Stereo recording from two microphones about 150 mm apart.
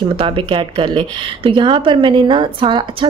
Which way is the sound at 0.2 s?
35° right (ahead or behind).